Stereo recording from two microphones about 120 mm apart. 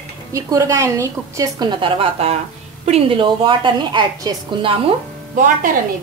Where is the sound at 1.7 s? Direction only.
45° right (ahead or behind).